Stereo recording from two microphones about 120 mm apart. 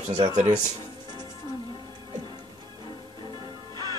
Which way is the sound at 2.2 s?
40° right (ahead or behind).